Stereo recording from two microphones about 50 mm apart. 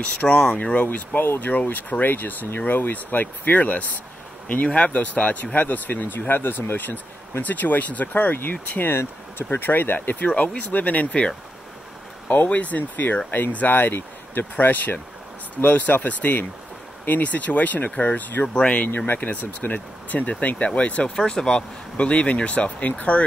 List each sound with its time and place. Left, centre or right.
0.2 s speech: left
0.8 s speech: left
8.9 s speech: left
18.5 s speech: left
18.9 s speech: left
21.2 s speech: centre